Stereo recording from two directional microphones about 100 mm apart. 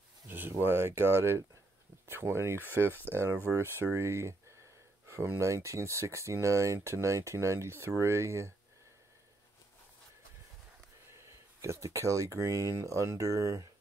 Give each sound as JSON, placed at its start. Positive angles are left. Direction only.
{"t": 0.3, "sound": "speech", "side_deg": -20}
{"t": 11.2, "sound": "speech", "side_deg": -30}